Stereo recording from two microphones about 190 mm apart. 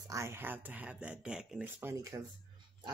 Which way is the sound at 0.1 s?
15° right (ahead or behind).